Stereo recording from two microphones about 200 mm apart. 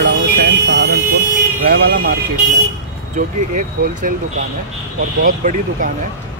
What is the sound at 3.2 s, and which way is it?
Speech, 40° right (ahead or behind).